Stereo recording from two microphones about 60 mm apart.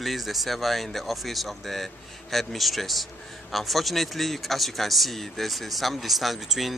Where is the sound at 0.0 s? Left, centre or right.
Centre.